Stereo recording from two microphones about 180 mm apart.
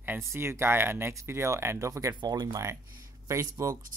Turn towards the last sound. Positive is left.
turn(degrees=-15)  # may be behind; listen again after turning